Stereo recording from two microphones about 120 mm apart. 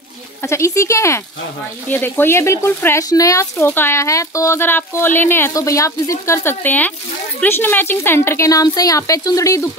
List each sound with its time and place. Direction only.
0.4 s speech: 25° left (ahead or behind)